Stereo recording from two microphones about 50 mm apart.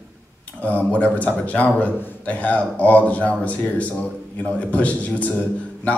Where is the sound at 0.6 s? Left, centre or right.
Left.